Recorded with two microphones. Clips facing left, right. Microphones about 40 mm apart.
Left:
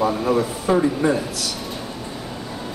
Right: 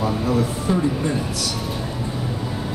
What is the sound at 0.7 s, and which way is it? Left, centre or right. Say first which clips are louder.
Speech: left 6 dB; left.